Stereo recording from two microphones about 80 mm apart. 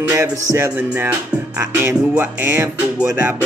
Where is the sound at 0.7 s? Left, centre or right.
Right.